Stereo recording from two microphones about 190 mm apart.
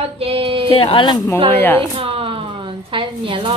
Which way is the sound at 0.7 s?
30° left (ahead or behind).